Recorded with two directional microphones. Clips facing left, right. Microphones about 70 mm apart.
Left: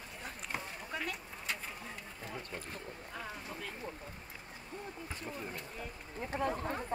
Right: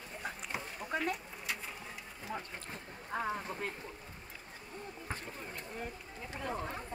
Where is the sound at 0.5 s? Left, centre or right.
Centre.